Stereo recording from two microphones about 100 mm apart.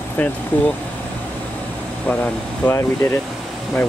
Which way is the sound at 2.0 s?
15° left (ahead or behind).